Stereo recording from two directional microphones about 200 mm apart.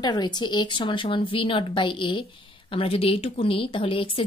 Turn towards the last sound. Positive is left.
turn(degrees=25)  # may be behind; listen again after turning